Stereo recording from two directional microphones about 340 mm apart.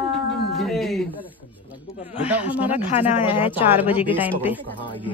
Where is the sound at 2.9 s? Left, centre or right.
Centre.